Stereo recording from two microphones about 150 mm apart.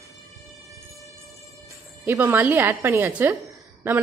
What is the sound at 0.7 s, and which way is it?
Music, 20° right (ahead or behind).